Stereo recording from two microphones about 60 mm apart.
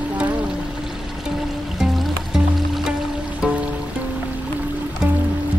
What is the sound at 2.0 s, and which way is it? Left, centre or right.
Music, centre.